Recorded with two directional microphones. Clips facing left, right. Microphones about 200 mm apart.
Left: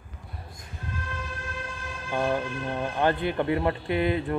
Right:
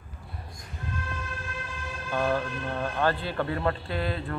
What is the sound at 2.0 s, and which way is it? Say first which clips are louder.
Speech: left 1 dB; 15° left (ahead or behind).